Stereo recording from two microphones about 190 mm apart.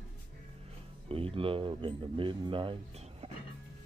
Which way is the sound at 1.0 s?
30° right (ahead or behind).